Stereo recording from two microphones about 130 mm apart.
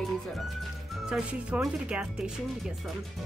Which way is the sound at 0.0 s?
Centre (ahead or behind).